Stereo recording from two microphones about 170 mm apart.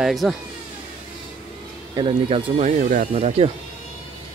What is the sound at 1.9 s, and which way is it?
Speech, 35° right (ahead or behind).